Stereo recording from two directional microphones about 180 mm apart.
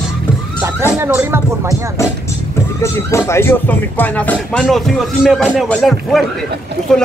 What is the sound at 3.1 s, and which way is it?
Speech, 15° left (ahead or behind).